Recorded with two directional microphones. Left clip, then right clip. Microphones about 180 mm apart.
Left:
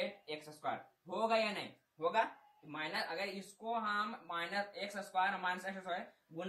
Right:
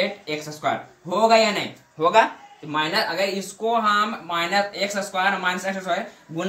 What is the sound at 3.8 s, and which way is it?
Speech, 10° right (ahead or behind).